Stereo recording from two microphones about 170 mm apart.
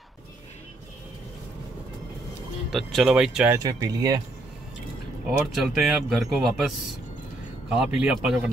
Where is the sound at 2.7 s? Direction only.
Centre (ahead or behind).